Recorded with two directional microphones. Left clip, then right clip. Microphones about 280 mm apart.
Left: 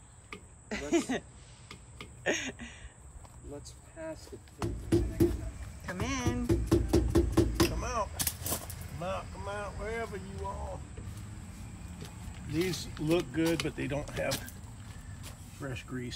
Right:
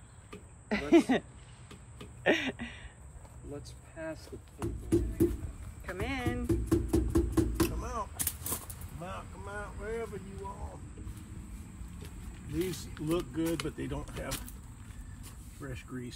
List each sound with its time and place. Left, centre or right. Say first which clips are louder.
0.3 s a sound: right 4 dB; centre
3.6 s speech: right 1 dB; left
4.6 s speech: left 1 dB; centre
5.9 s music: left 1 dB; centre
7.6 s a sound: left 3 dB; centre
12.4 s speech: left 3 dB; centre
15.6 s speech: left 3 dB; centre